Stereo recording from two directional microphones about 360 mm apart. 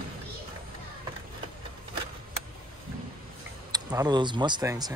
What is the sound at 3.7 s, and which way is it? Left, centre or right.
Speech, centre.